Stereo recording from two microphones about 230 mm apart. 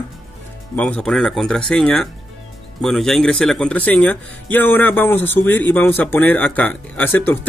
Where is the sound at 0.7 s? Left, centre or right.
Centre.